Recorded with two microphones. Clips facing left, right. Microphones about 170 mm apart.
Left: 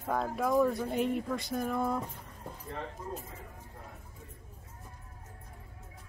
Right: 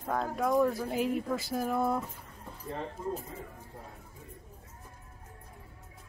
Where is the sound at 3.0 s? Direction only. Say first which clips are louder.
Right 9 dB; 30° right (ahead or behind).